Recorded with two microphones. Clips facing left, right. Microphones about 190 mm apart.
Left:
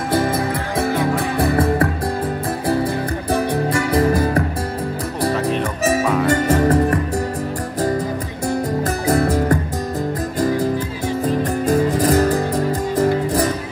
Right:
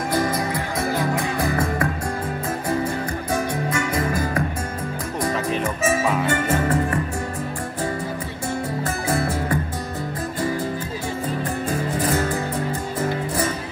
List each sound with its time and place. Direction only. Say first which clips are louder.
0.7 s music: left 5 dB; 30° left (ahead or behind)
3.3 s music: left 5 dB; 35° left (ahead or behind)
6.2 s music: left 6 dB; 35° left (ahead or behind)
9.0 s music: left 7 dB; 40° left (ahead or behind)
11.2 s music: left 8 dB; 40° left (ahead or behind)